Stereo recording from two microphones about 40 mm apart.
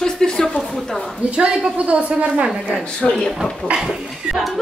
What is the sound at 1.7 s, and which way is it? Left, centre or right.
Speech, right.